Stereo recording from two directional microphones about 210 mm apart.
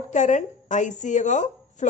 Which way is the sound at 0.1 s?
35° left (ahead or behind).